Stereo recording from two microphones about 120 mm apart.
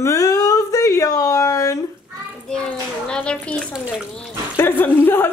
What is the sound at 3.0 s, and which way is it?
Speech, 5° left (ahead or behind).